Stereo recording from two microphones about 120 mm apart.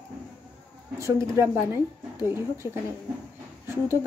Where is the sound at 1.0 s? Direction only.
25° right (ahead or behind).